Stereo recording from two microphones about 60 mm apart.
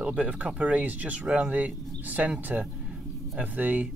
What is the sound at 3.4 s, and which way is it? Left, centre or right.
Speech, right.